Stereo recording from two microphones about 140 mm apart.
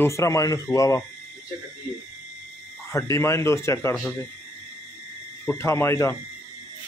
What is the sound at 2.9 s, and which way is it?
Speech, 20° left (ahead or behind).